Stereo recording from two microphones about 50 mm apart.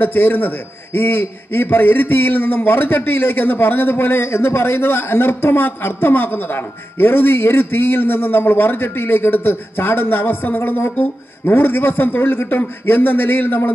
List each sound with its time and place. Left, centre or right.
0.0 s a man's voice: left